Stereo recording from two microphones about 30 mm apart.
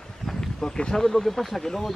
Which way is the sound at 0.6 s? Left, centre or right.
Left.